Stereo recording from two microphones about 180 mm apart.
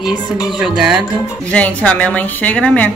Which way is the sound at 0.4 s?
5° right (ahead or behind).